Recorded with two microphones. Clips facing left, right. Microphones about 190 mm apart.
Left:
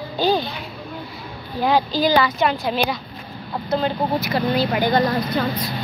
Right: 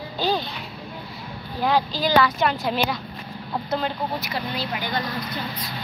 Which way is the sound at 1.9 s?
5° left (ahead or behind).